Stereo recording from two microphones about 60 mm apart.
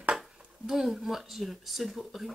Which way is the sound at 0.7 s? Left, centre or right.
Centre.